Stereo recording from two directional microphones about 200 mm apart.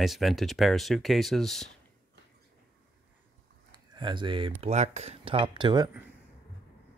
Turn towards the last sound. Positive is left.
turn(degrees=-20)  # may be behind; listen again after turning